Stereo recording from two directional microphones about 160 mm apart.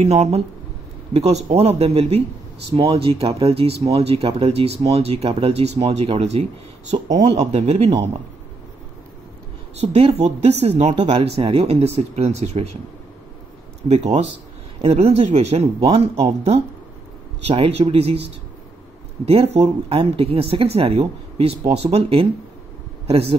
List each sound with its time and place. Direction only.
0.0 s speech: 40° right (ahead or behind)
9.8 s speech: 40° right (ahead or behind)
13.8 s speech: 45° right (ahead or behind)